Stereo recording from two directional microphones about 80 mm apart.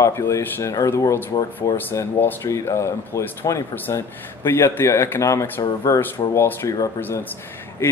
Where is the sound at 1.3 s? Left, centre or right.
Left.